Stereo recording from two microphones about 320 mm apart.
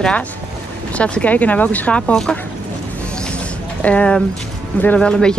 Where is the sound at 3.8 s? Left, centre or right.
Centre.